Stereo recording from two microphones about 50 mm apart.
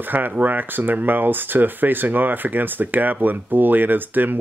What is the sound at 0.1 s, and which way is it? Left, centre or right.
Speech, right.